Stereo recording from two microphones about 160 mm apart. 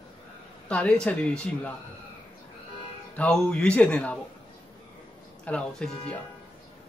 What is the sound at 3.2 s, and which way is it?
A man's voice, 5° left (ahead or behind).